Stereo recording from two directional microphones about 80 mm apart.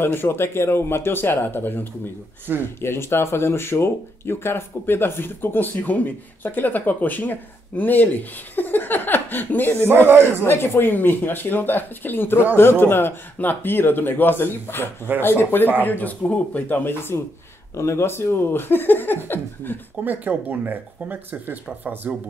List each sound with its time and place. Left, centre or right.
0.0 s speech: left
9.8 s speech: right
10.4 s speech: left
20.1 s speech: right